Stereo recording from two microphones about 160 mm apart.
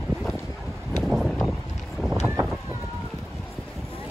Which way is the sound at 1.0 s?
Centre (ahead or behind).